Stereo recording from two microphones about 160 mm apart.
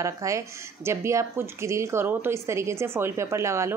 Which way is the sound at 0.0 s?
20° right (ahead or behind).